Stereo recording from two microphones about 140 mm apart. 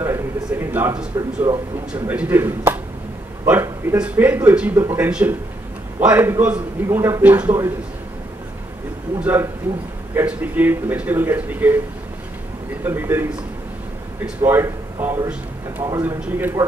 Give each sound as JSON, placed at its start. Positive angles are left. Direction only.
{"t": 0.0, "sound": "speech", "side_deg": -15}
{"t": 9.2, "sound": "speech", "side_deg": -15}
{"t": 12.8, "sound": "speech", "side_deg": -15}
{"t": 14.4, "sound": "speech", "side_deg": -15}